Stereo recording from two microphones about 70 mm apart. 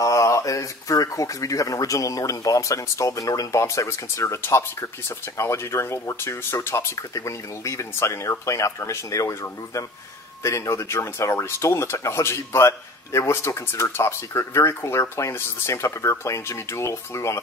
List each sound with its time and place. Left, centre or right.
0.0 s speech: left
7.0 s speech: left